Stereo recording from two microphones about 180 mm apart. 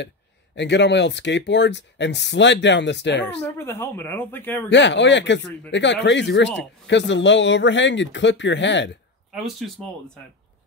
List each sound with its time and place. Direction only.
0.6 s speech: 75° left (ahead or behind)
3.4 s a man's voice: 15° left (ahead or behind)
4.6 s speech: 80° left
9.3 s speech: 5° right (ahead or behind)